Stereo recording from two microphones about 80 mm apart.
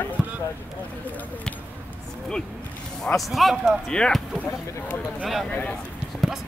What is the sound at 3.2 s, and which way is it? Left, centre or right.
A man's voice, centre.